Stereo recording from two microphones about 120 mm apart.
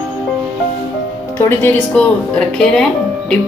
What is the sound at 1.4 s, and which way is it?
Speech, 20° left (ahead or behind).